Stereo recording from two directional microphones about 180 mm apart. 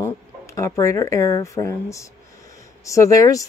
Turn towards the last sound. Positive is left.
turn(degrees=20)  # may be behind; listen again after turning